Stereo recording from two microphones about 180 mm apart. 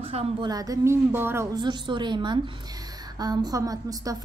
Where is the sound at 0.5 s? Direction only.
20° right (ahead or behind).